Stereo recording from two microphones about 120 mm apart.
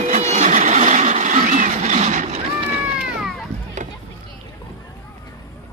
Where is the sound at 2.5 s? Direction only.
60° right (ahead or behind).